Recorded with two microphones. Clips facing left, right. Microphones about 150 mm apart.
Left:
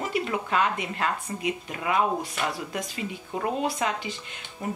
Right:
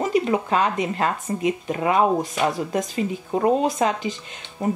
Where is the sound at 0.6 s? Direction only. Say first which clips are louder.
Right 5 dB; 40° right (ahead or behind).